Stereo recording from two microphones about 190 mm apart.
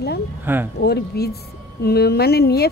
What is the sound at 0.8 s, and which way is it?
Speech, 55° left (ahead or behind).